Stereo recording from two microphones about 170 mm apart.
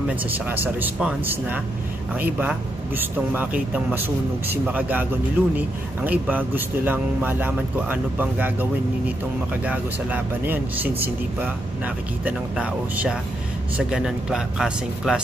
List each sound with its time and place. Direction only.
0.1 s a man's voice: 10° right (ahead or behind)
9.7 s a man's voice: 10° right (ahead or behind)